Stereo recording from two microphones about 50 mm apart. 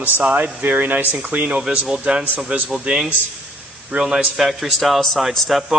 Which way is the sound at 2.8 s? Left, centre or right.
Centre.